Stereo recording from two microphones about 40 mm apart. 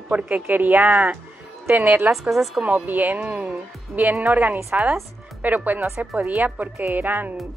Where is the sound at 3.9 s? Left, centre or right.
Right.